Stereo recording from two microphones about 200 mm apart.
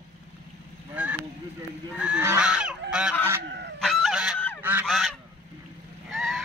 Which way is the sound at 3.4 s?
60° right (ahead or behind).